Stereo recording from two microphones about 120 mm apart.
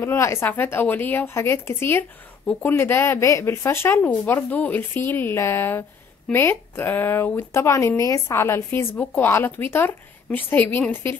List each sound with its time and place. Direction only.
0.0 s speech: 20° left (ahead or behind)